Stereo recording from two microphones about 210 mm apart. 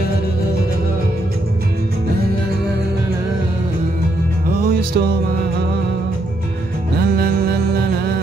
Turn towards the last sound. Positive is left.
turn(degrees=-50)  # may be behind; listen again after turning